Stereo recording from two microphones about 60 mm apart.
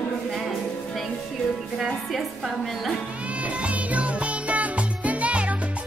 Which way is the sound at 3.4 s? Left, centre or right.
Right.